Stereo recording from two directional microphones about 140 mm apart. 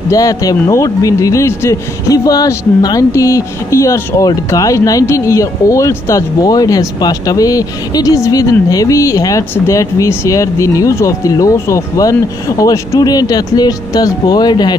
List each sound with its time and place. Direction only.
0.1 s speech: 25° left (ahead or behind)